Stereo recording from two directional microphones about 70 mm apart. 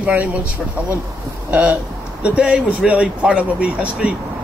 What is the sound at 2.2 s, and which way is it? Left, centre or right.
Speech, centre.